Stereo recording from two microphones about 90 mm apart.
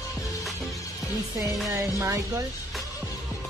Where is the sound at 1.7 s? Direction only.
30° right (ahead or behind).